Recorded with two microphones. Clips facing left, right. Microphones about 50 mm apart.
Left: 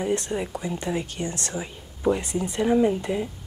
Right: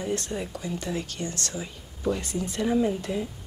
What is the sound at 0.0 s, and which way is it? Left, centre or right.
Speech, left.